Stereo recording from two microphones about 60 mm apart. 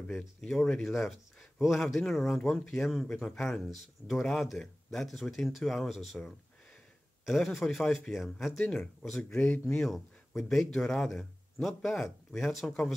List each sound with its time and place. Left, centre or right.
0.4 s speech: centre
8.5 s speech: centre